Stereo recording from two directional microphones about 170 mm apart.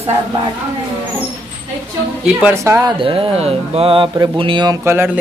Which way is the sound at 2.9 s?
30° right (ahead or behind).